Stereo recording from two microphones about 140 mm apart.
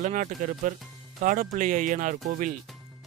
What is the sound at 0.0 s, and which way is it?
Speech, 60° right (ahead or behind).